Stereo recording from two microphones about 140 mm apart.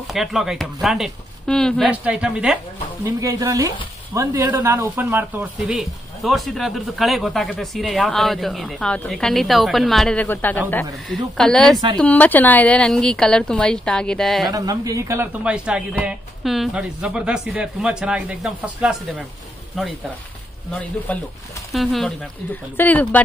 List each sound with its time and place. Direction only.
0.0 s a woman's voice: centre (ahead or behind)
1.9 s speech: 10° right (ahead or behind)
3.0 s speech: 25° right (ahead or behind)
5.4 s a woman's voice: centre (ahead or behind)
10.2 s speech: 15° left (ahead or behind)
11.1 s a woman's voice: 5° left (ahead or behind)
14.5 s speech: 25° right (ahead or behind)
15.4 s a woman's voice: 10° right (ahead or behind)
21.1 s a woman's voice: 10° left (ahead or behind)
22.5 s speech: 10° left (ahead or behind)